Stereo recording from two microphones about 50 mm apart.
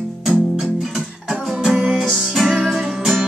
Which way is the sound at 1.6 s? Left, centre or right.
Centre.